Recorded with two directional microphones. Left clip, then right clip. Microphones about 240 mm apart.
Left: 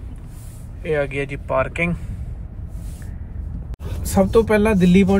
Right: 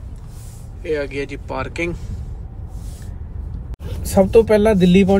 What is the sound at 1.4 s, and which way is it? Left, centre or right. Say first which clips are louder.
Speech: left 7 dB; centre.